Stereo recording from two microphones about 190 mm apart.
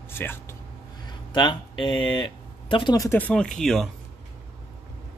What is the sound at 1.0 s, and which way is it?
Speech, 25° left (ahead or behind).